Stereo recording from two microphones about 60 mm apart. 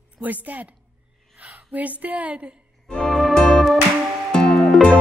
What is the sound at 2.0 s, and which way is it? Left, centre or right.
Speech, right.